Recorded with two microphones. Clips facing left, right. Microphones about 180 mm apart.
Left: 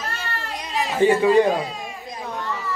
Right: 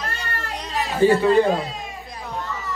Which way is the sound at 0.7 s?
15° left (ahead or behind).